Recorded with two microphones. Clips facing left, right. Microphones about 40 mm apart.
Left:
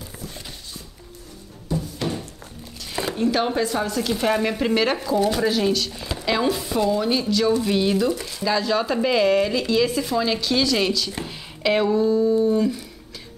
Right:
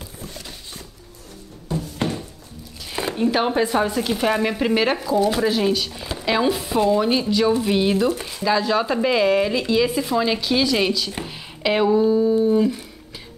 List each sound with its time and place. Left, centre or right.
0.2 s a sound: right
2.8 s speech: centre
6.8 s speech: right